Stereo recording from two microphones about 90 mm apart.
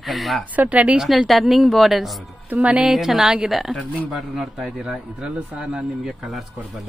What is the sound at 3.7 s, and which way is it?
Speech, 15° left (ahead or behind).